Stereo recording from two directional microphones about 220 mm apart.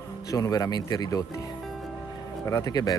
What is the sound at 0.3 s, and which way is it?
Speech, 15° left (ahead or behind).